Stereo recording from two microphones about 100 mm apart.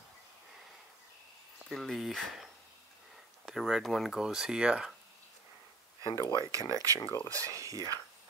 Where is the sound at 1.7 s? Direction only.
Centre (ahead or behind).